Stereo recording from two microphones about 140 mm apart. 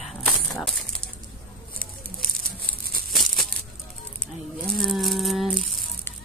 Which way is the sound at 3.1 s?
Centre (ahead or behind).